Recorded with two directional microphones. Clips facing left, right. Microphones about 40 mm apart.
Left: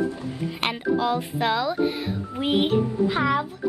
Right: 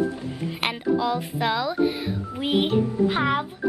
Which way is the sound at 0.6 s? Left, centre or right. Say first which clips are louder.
Even; centre.